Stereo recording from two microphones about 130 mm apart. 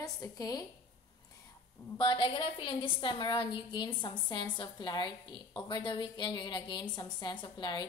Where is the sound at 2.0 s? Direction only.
35° left (ahead or behind).